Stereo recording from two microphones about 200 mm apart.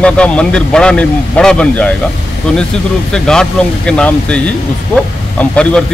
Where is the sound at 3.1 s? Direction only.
5° left (ahead or behind).